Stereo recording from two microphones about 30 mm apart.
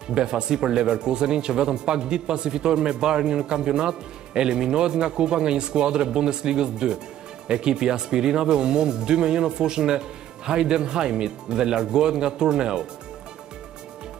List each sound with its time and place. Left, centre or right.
0.1 s speech: right